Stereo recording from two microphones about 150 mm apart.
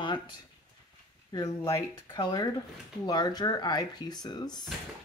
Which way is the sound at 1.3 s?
30° left (ahead or behind).